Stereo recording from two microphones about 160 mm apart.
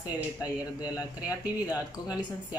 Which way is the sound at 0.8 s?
20° left (ahead or behind).